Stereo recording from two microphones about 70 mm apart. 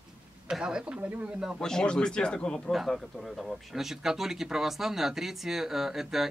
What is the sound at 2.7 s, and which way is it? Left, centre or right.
Speech, centre.